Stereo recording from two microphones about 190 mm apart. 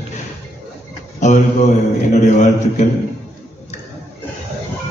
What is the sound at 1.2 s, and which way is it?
Mantra, 40° left (ahead or behind).